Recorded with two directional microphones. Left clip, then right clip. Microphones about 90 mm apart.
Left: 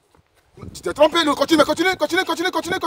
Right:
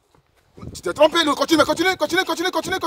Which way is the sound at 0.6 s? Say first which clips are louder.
Even; 5° right (ahead or behind).